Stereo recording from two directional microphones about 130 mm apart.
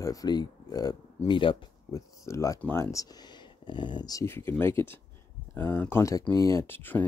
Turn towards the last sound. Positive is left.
turn(degrees=15)  # may be behind; listen again after turning